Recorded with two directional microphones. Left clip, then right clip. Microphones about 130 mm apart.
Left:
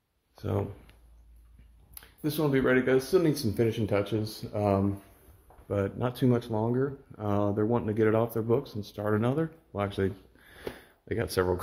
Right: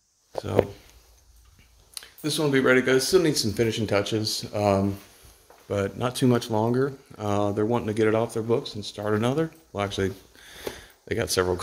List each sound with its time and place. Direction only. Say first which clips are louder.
2.0 s speech: right 4 dB; 10° right (ahead or behind)
6.1 s speech: right 6 dB; 45° right (ahead or behind)
7.2 s speech: right 4 dB; 20° right (ahead or behind)
8.4 s speech: right 3 dB; 5° right (ahead or behind)
9.2 s speech: right 4 dB; 25° right (ahead or behind)
10.6 s a sound: right 4 dB; 25° right (ahead or behind)